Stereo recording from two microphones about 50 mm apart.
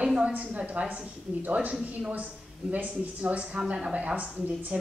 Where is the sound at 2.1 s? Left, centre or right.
Right.